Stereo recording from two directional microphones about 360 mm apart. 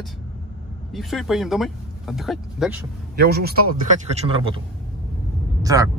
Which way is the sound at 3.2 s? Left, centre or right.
Right.